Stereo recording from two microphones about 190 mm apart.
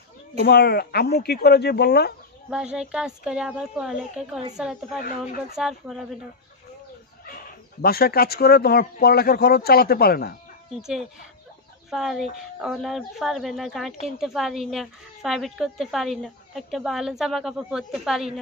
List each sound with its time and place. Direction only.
0.4 s speech: 55° left (ahead or behind)
2.5 s speech: 5° right (ahead or behind)
7.8 s speech: 55° left (ahead or behind)
10.8 s speech: centre (ahead or behind)